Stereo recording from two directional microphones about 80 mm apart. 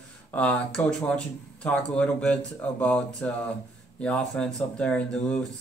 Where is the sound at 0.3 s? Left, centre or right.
Centre.